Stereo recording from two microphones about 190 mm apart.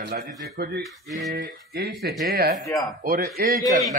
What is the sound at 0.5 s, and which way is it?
Speech, 60° right (ahead or behind).